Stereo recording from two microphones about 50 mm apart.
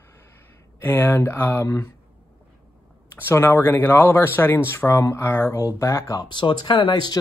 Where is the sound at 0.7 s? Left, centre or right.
Left.